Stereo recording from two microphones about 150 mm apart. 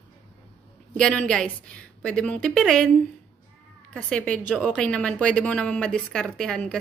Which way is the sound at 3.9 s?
5° left (ahead or behind).